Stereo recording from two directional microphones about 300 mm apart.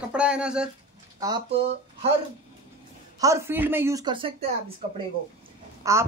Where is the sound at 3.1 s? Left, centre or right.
Centre.